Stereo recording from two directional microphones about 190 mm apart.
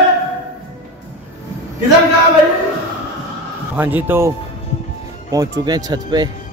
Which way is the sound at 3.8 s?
10° right (ahead or behind).